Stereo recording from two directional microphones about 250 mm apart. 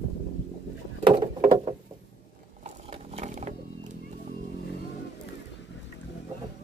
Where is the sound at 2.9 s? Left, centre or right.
Right.